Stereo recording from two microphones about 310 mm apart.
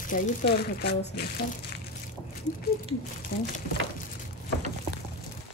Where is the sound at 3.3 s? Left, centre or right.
Left.